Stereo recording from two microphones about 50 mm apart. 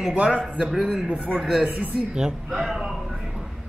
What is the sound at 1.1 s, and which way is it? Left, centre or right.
Speech, right.